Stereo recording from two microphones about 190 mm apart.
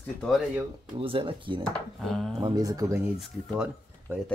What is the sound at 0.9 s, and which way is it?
Speech, 30° right (ahead or behind).